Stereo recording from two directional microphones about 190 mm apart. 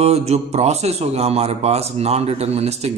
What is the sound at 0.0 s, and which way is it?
A man's voice, 35° right (ahead or behind).